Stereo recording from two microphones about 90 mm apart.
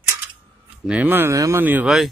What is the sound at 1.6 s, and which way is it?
Speech, 20° right (ahead or behind).